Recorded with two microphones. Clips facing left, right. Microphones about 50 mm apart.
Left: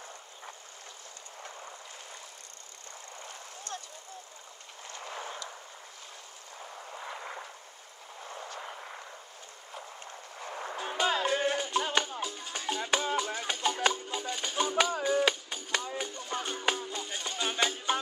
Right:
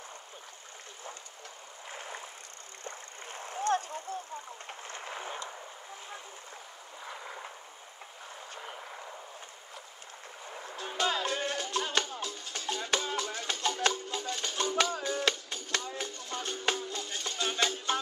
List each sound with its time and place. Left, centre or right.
2.8 s vehicle: right
5.1 s vehicle: right
7.0 s a sound: centre
8.6 s a sound: centre
10.5 s music: left
10.8 s music: centre